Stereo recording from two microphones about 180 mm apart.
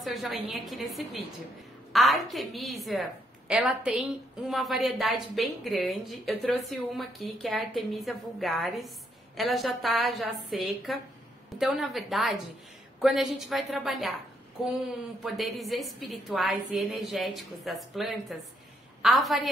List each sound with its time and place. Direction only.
0.0 s a woman's voice: centre (ahead or behind)
15.2 s a woman's voice: centre (ahead or behind)